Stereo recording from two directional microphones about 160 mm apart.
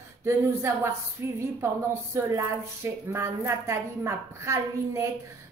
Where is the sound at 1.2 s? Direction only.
15° right (ahead or behind).